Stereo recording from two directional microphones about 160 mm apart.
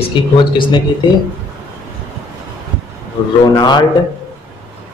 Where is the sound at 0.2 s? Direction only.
30° left (ahead or behind).